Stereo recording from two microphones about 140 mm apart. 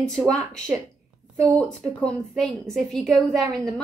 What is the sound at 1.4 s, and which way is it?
A woman's voice, 10° left (ahead or behind).